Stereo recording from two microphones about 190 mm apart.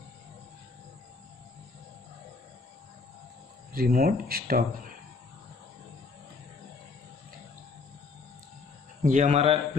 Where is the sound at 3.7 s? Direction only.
50° right (ahead or behind).